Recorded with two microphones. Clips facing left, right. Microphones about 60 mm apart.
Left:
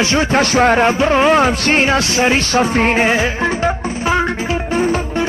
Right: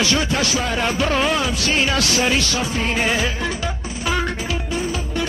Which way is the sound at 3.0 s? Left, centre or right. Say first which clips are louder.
Left 6 dB; left.